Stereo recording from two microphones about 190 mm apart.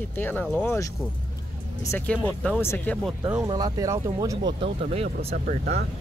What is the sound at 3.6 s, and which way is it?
Speech, 20° right (ahead or behind).